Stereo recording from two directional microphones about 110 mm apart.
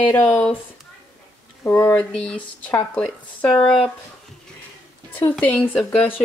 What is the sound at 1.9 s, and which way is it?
Speech, 10° left (ahead or behind).